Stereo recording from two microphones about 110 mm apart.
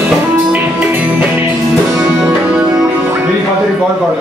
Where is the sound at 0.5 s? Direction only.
15° right (ahead or behind).